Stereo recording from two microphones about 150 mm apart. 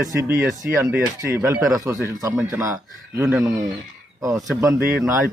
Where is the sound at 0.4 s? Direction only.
15° right (ahead or behind).